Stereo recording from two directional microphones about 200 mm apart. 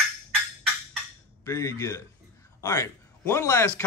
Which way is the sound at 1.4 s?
15° left (ahead or behind).